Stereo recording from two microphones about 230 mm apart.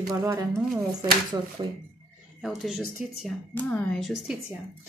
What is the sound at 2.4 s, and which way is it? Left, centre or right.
Speech, centre.